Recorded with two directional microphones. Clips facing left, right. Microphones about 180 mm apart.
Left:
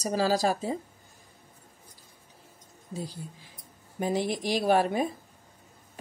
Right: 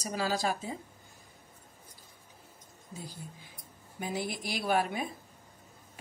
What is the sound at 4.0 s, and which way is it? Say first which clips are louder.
Speech: left 7 dB; 35° left (ahead or behind).